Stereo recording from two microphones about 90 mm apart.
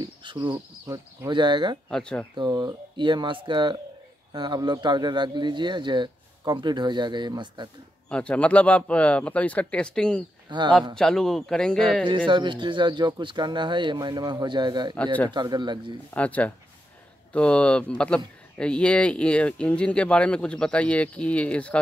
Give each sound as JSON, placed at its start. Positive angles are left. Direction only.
{"t": 0.0, "sound": "insect", "side_deg": -60}
{"t": 0.8, "sound": "speech", "side_deg": -35}
{"t": 1.3, "sound": "speech", "side_deg": -60}
{"t": 1.9, "sound": "speech", "side_deg": 10}
{"t": 2.3, "sound": "speech", "side_deg": -55}
{"t": 8.1, "sound": "speech", "side_deg": 15}
{"t": 10.5, "sound": "speech", "side_deg": -55}
{"t": 11.0, "sound": "speech", "side_deg": 5}
{"t": 12.3, "sound": "speech", "side_deg": -60}
{"t": 16.1, "sound": "speech", "side_deg": 15}